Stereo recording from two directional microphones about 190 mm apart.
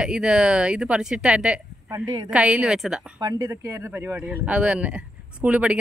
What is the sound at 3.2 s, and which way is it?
Speech, 20° right (ahead or behind).